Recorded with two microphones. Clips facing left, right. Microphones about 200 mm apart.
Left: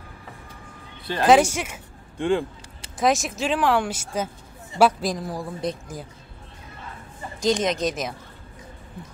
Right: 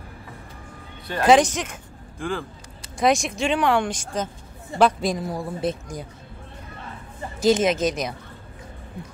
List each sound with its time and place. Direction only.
1.2 s speech: 5° left (ahead or behind)
2.1 s speech: 25° left (ahead or behind)
3.0 s speech: centre (ahead or behind)
7.3 s speech: 5° right (ahead or behind)